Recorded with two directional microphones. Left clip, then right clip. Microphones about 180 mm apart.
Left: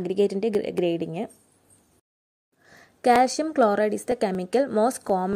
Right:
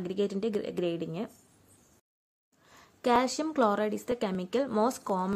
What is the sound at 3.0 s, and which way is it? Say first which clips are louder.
A woman's voice: left 7 dB; 20° left (ahead or behind).